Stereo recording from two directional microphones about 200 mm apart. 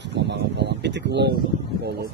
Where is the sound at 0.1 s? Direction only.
60° right (ahead or behind).